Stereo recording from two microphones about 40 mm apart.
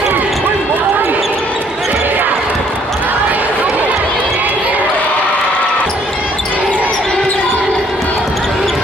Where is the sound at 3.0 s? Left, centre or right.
Right.